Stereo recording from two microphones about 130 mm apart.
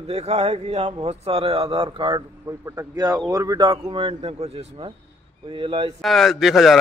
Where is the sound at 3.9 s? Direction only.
45° right (ahead or behind).